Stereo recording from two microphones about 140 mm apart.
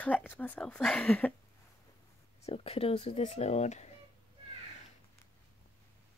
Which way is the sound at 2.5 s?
45° left (ahead or behind).